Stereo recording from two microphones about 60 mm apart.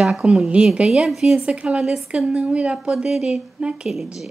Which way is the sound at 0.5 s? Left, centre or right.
Centre.